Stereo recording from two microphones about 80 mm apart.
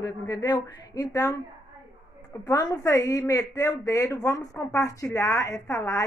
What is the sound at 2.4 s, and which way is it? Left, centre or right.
Speech, left.